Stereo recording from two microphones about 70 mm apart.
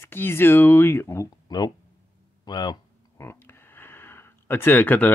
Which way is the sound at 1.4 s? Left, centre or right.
Left.